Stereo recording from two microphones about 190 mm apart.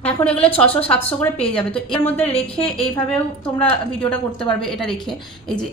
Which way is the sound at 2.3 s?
30° left (ahead or behind).